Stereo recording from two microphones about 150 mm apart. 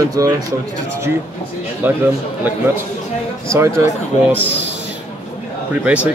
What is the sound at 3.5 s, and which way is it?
Speech, 20° right (ahead or behind).